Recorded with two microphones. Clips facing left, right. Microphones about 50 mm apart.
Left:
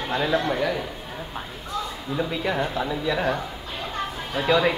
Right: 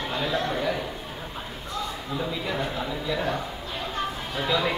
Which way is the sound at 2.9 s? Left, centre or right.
Left.